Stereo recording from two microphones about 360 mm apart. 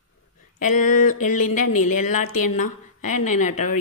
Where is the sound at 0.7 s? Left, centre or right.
Left.